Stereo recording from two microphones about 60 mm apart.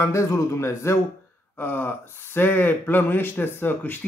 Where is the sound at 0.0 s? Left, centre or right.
Left.